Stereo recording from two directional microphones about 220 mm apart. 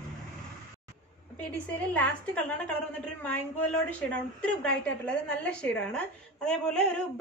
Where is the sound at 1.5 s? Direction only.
5° left (ahead or behind).